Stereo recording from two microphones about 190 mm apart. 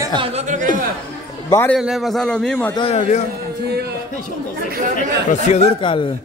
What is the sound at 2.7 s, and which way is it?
Speech, 25° left (ahead or behind).